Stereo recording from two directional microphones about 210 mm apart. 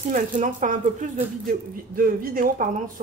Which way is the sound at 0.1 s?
40° right (ahead or behind).